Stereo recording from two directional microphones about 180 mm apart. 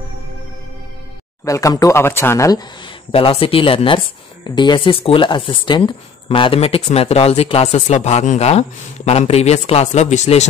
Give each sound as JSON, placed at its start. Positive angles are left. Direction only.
{"t": 1.4, "sound": "speech", "side_deg": 15}
{"t": 3.1, "sound": "speech", "side_deg": 30}